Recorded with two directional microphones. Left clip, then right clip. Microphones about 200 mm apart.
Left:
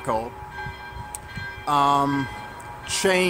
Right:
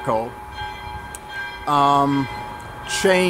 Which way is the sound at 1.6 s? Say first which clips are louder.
Right 3 dB; 15° left (ahead or behind).